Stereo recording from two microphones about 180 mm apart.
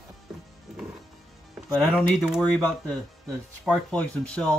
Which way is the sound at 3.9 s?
5° left (ahead or behind).